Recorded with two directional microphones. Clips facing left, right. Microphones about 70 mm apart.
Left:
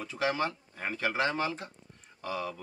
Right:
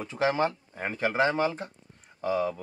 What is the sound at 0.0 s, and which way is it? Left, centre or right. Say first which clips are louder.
Speech: right 5 dB; right.